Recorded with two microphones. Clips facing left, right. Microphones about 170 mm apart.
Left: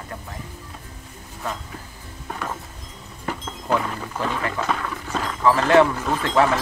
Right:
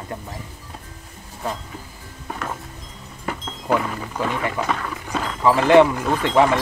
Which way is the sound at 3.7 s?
5° right (ahead or behind).